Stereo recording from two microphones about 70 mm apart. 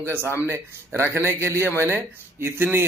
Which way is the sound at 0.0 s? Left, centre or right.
Right.